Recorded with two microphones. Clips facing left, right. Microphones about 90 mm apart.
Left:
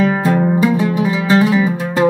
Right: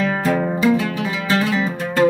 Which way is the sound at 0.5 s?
10° left (ahead or behind).